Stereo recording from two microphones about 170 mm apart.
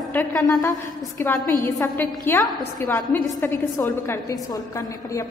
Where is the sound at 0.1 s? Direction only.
10° left (ahead or behind).